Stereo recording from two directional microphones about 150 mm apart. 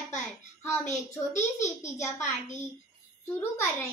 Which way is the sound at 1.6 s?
20° left (ahead or behind).